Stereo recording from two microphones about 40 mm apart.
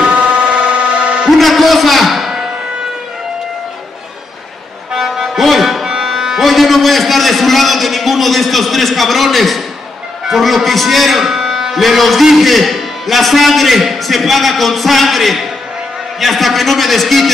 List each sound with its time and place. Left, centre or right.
0.1 s a sound: right
1.4 s a man's voice: centre
4.9 s music: centre
5.9 s a man's voice: centre
11.7 s a man's voice: centre